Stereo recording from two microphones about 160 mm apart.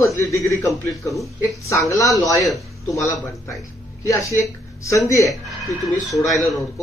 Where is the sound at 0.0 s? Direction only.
20° left (ahead or behind).